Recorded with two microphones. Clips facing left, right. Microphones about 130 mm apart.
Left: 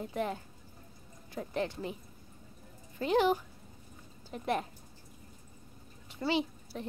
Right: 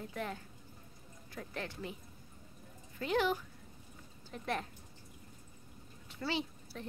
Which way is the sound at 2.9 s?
25° left (ahead or behind).